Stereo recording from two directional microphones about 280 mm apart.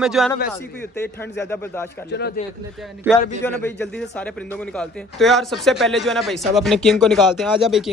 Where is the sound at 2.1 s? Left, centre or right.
Left.